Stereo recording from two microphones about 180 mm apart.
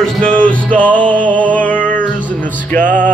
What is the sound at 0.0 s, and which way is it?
Music, 5° left (ahead or behind).